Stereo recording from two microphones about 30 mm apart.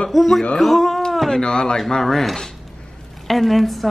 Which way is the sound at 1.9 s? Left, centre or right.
Centre.